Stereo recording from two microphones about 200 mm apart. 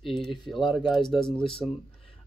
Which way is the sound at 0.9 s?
Centre (ahead or behind).